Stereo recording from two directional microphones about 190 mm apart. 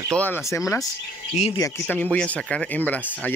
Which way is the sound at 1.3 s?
35° left (ahead or behind).